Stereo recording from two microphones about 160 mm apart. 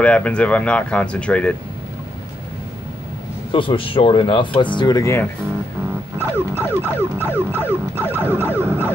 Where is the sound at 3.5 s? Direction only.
35° left (ahead or behind).